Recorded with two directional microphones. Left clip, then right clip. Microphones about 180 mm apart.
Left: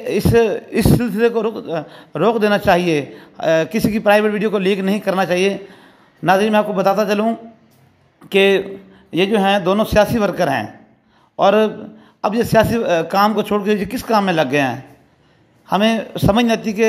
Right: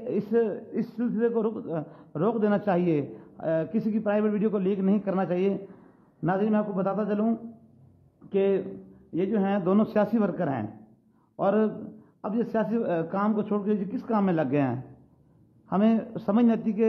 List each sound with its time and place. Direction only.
0.0 s speech: 15° left (ahead or behind)
1.3 s a man's voice: 10° left (ahead or behind)
9.7 s a man's voice: 10° left (ahead or behind)